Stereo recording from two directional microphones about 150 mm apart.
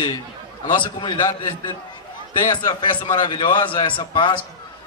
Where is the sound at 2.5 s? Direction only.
30° left (ahead or behind).